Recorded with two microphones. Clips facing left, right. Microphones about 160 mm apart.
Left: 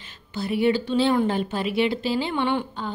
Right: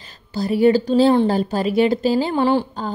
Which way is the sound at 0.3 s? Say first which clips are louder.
Right 6 dB; 40° right (ahead or behind).